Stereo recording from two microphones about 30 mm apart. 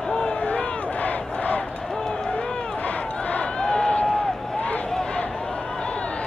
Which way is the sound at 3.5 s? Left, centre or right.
Left.